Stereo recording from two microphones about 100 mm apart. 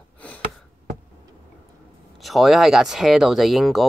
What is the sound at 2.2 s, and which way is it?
Speech, centre (ahead or behind).